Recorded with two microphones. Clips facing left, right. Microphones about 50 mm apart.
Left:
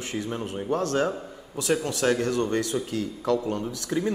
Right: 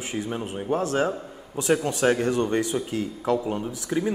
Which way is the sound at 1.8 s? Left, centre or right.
Right.